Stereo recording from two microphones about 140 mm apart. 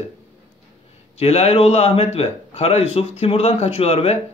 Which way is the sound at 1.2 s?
45° left (ahead or behind).